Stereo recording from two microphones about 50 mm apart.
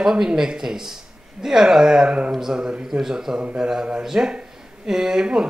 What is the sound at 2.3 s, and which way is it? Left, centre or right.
Speech, centre.